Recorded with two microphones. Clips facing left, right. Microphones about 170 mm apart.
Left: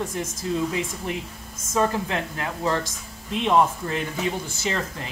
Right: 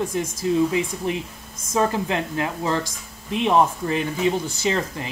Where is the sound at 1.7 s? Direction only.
20° right (ahead or behind).